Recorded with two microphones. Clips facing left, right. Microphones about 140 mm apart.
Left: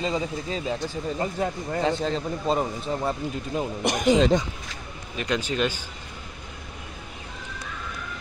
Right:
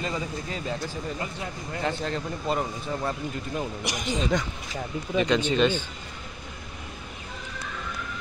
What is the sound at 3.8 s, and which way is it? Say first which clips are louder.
Speech: left 9 dB; 50° left (ahead or behind).